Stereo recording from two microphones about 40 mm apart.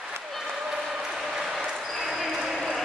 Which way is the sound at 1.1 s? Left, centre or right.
Centre.